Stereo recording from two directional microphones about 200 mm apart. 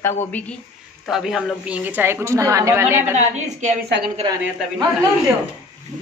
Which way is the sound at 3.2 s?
35° right (ahead or behind).